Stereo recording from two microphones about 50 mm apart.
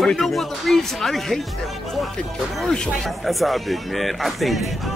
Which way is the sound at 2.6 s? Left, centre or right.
Centre.